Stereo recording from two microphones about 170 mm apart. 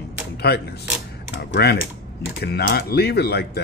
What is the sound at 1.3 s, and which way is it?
Speech, 80° left.